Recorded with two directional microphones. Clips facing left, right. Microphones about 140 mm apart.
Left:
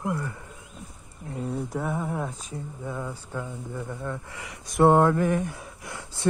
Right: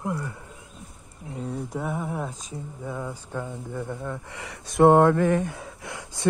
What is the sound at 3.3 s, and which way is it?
Speech, 50° right (ahead or behind).